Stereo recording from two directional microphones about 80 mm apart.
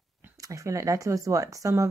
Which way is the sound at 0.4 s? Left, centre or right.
Right.